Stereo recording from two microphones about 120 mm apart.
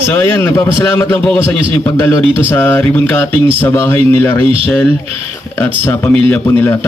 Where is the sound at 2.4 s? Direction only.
20° left (ahead or behind).